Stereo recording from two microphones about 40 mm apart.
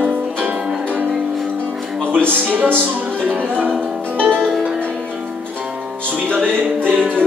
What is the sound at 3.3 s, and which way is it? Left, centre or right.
Music, right.